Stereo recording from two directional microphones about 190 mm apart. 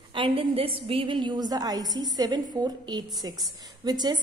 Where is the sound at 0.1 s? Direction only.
25° right (ahead or behind).